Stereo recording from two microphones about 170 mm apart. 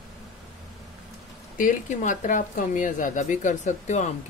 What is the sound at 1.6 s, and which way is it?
Speech, 50° left (ahead or behind).